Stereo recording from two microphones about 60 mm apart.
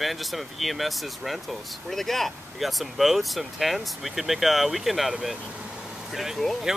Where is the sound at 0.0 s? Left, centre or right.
Centre.